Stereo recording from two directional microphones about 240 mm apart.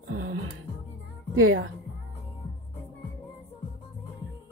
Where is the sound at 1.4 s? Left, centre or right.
Right.